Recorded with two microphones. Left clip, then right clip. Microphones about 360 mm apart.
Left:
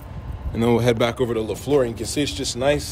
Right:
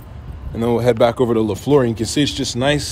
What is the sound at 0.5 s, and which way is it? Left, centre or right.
Speech, centre.